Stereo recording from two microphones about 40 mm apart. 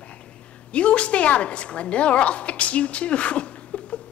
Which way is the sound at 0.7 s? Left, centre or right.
Left.